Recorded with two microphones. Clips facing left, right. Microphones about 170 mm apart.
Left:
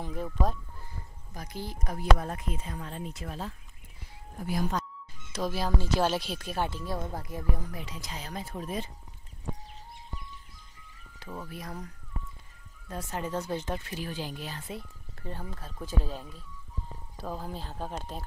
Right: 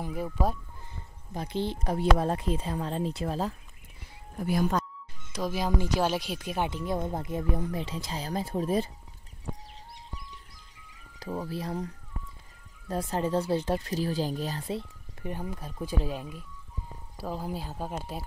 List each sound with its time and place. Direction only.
0.0 s speech: 10° right (ahead or behind)
1.3 s speech: 25° right (ahead or behind)
5.3 s speech: 15° right (ahead or behind); by 8.9 s 35° right (ahead or behind)
11.4 s speech: 30° right (ahead or behind)
15.2 s speech: 15° right (ahead or behind)